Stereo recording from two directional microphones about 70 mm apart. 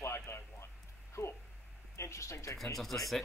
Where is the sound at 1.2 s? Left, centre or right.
Left.